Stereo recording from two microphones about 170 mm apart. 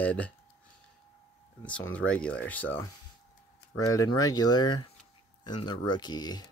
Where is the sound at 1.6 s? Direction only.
10° left (ahead or behind).